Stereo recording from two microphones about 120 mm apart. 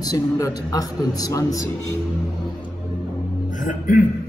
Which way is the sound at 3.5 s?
90° left.